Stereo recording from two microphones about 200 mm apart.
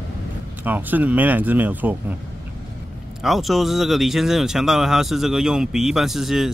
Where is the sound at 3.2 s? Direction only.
Centre (ahead or behind).